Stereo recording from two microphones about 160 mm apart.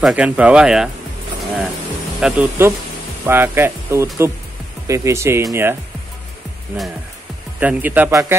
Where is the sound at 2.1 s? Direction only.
5° right (ahead or behind).